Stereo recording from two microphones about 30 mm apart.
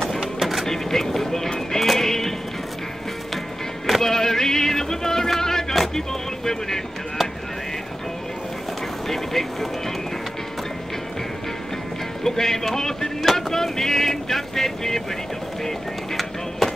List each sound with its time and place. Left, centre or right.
0.4 s a sound: centre
0.7 s vehicle: centre
1.7 s music: centre
3.8 s music: centre
5.4 s a sound: centre
5.9 s vehicle: centre
9.1 s vehicle: centre
12.2 s vehicle: centre